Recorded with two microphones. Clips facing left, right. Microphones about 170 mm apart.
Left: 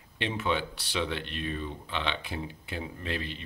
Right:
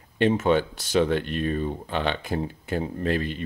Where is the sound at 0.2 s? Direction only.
45° right (ahead or behind).